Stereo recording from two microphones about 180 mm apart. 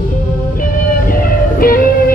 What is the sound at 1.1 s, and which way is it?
Music, 55° left (ahead or behind).